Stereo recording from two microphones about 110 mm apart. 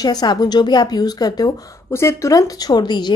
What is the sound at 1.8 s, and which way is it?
Speech, 25° left (ahead or behind).